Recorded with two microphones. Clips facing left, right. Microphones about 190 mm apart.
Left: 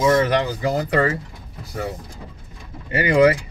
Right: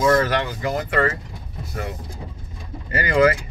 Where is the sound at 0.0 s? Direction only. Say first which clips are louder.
Left 1 dB; 20° left (ahead or behind).